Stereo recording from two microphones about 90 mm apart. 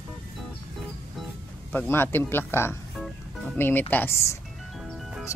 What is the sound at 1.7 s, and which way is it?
Speech, 20° left (ahead or behind).